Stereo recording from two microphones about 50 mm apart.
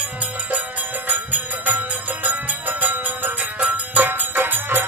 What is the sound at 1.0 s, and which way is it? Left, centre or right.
Cowbell, right.